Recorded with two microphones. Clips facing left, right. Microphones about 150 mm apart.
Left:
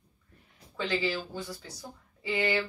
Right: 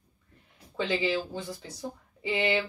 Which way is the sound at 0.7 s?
20° right (ahead or behind).